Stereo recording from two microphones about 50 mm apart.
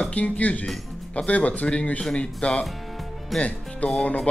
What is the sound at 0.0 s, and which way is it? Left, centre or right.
Speech, left.